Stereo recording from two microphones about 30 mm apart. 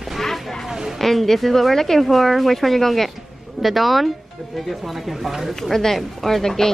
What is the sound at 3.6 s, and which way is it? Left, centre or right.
Speech, centre.